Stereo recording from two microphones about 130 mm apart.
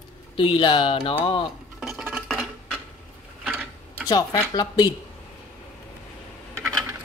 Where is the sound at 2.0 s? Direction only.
5° right (ahead or behind).